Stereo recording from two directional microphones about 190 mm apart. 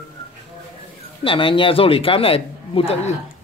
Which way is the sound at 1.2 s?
30° left (ahead or behind).